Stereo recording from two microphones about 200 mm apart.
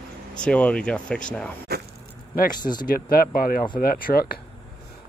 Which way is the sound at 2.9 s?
45° left (ahead or behind).